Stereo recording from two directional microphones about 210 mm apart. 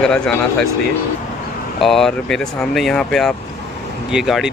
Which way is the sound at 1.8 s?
Centre (ahead or behind).